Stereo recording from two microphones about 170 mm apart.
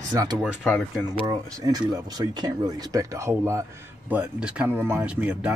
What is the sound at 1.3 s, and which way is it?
Speech, 20° right (ahead or behind).